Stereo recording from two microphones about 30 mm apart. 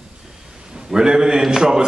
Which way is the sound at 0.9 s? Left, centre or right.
Right.